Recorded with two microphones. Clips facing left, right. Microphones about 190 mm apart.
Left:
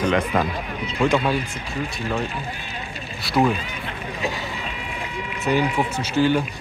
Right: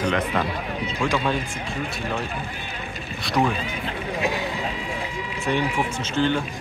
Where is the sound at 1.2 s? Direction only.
5° left (ahead or behind).